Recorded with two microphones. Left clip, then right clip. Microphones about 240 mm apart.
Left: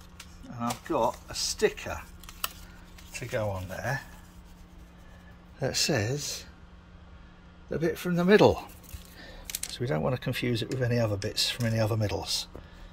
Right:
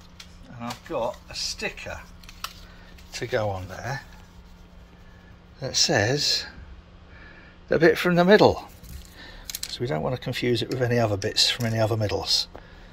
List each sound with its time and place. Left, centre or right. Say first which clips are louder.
0.5 s music: left 3 dB; centre
0.8 s speech: even; centre
3.2 s speech: right 5 dB; centre
5.6 s speech: right 5 dB; centre
5.9 s speech: right 10 dB; centre
7.7 s speech: right 11 dB; centre